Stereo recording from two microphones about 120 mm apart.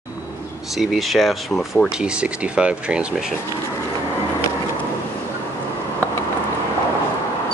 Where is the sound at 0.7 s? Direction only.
Centre (ahead or behind).